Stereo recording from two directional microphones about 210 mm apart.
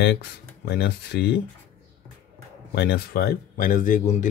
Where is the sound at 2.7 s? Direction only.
50° left (ahead or behind).